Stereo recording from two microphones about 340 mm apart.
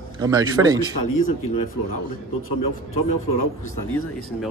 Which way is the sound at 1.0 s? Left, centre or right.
Left.